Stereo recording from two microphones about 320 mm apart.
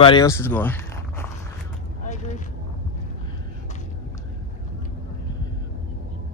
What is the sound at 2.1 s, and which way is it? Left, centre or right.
Vehicle, left.